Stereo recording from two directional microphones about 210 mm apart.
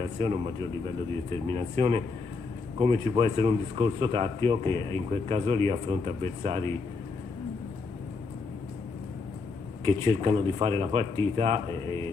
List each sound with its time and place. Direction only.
0.0 s a man's voice: 25° right (ahead or behind)
1.5 s a man's voice: 25° right (ahead or behind)
9.8 s a man's voice: 25° right (ahead or behind)